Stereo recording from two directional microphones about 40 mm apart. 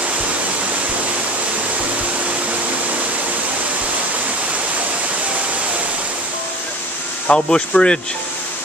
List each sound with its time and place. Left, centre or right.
7.2 s speech: left